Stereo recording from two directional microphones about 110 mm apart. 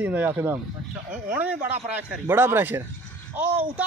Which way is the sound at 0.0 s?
15° right (ahead or behind).